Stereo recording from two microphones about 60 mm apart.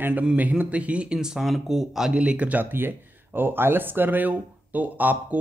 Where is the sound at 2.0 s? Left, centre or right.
Centre.